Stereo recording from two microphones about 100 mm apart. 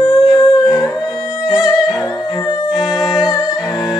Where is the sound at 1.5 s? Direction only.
5° right (ahead or behind).